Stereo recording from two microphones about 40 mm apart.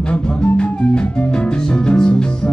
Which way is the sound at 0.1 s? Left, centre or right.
Left.